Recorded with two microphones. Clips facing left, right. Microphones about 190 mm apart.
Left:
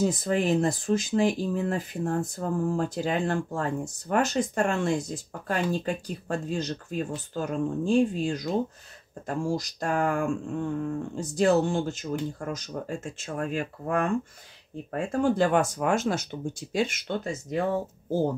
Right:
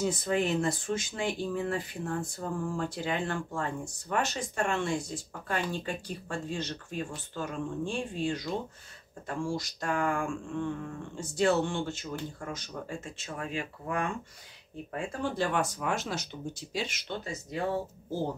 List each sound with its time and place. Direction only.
0.0 s speech: 35° left (ahead or behind)